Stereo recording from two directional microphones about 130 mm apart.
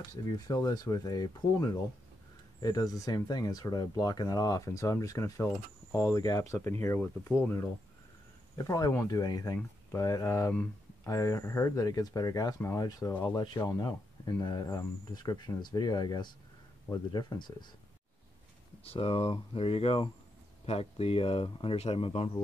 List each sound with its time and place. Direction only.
0.1 s speech: 30° left (ahead or behind)
2.6 s speech: 30° left (ahead or behind)
18.9 s speech: 50° left (ahead or behind)